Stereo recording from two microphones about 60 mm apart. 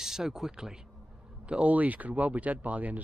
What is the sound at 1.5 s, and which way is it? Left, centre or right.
Speech, right.